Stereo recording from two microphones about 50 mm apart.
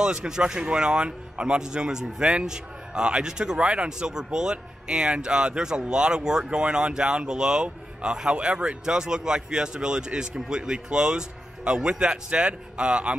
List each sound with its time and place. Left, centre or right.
0.0 s speech: centre
4.1 s speech: centre